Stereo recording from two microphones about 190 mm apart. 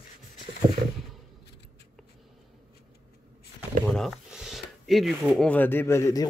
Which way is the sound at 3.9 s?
Centre (ahead or behind).